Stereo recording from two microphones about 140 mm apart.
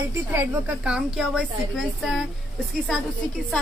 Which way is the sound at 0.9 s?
5° right (ahead or behind).